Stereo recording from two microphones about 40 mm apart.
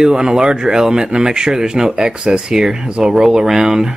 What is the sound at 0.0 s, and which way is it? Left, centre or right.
Speech, centre.